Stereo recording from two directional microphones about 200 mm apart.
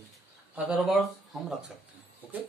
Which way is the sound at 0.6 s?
Centre (ahead or behind).